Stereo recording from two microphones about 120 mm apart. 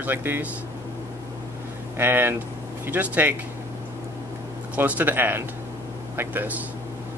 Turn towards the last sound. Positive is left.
turn(degrees=-15)  # may be behind; listen again after turning